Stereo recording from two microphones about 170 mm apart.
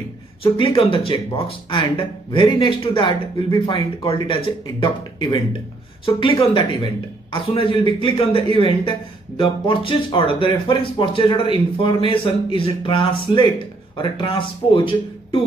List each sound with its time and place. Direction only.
0.4 s speech: 30° left (ahead or behind)